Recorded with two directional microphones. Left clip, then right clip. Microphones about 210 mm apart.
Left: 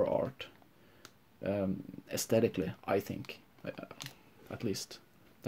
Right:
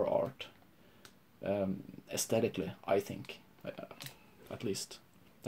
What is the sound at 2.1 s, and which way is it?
Speech, 30° left (ahead or behind).